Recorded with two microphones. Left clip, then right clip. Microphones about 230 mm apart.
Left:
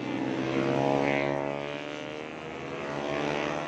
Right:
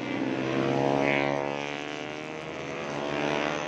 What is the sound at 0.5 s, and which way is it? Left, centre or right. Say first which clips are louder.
Vehicle: even; centre.